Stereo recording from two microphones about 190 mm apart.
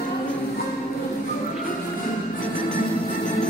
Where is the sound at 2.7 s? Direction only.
40° left (ahead or behind).